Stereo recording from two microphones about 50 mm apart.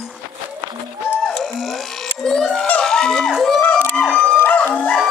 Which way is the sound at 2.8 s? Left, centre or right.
Centre.